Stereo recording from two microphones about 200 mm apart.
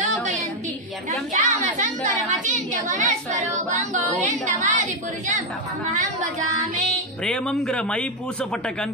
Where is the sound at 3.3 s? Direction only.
15° right (ahead or behind).